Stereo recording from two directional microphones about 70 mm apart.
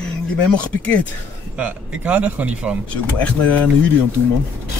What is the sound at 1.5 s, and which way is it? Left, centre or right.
A man's voice, centre.